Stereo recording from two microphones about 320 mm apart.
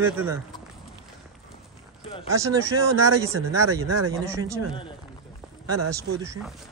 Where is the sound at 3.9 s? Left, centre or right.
Right.